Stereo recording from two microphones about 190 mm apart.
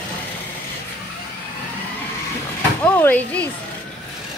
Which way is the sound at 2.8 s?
10° left (ahead or behind).